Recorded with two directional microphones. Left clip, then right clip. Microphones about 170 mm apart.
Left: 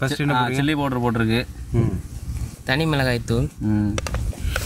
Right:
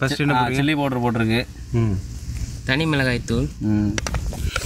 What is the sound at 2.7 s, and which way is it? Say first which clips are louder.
Speech: even; 70° left (ahead or behind).